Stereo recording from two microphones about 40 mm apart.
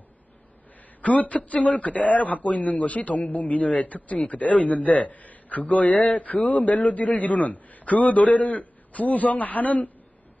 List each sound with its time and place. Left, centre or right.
1.0 s a man's voice: left